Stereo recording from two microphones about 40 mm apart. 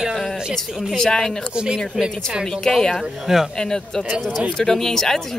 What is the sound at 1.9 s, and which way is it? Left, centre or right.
Speech, centre.